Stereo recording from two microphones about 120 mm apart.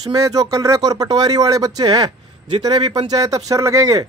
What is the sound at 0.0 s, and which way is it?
Speech, 30° right (ahead or behind).